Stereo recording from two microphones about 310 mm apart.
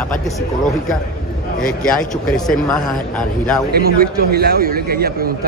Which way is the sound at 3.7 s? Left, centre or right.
Right.